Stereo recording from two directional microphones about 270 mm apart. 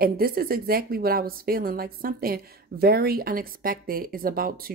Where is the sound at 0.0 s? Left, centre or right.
Right.